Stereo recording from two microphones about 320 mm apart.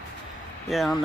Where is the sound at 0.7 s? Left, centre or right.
Centre.